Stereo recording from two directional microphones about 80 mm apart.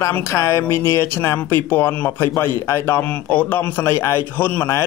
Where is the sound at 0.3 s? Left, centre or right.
Left.